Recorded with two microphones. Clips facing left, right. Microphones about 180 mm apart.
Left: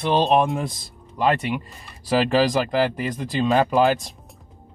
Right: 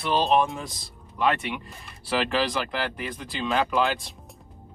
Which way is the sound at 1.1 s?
40° left (ahead or behind).